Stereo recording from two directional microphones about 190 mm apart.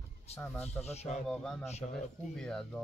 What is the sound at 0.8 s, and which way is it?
Speech, 35° left (ahead or behind).